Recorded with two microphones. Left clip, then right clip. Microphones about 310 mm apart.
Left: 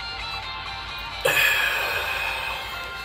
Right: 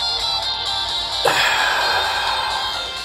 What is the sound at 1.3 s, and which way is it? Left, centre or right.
Music, centre.